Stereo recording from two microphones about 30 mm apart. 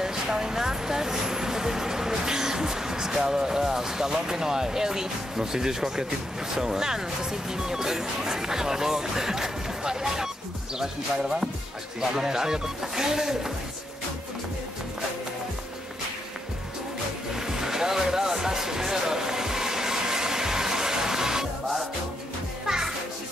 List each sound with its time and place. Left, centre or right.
0.0 s vehicle: centre
4.1 s speech: centre
17.4 s music: centre
22.7 s music: right